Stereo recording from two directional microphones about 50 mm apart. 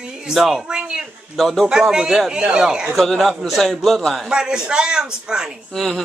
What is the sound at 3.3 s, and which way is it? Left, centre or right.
Speech, centre.